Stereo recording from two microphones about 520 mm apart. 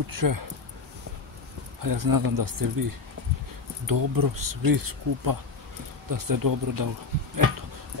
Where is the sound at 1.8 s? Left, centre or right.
Right.